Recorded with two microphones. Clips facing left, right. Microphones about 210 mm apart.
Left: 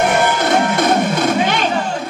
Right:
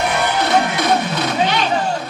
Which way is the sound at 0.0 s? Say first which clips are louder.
Left 3 dB; 50° left (ahead or behind).